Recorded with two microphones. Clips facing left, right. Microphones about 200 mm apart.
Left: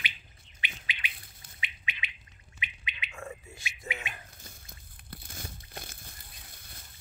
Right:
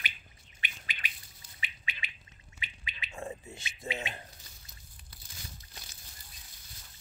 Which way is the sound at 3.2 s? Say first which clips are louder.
Right 3 dB; 25° right (ahead or behind).